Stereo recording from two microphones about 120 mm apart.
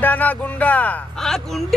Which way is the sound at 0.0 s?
15° left (ahead or behind).